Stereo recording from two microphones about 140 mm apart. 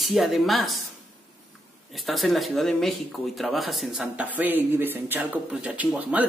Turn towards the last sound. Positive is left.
turn(degrees=-10)  # may be behind; listen again after turning